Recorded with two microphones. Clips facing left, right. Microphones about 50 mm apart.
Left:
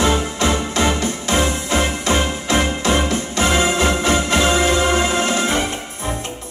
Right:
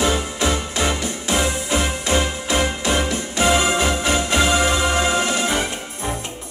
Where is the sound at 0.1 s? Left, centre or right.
Left.